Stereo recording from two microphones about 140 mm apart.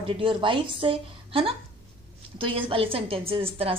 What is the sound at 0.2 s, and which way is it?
A woman's voice, 35° right (ahead or behind).